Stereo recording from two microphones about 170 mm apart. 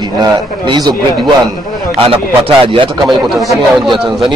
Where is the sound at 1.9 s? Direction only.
35° right (ahead or behind).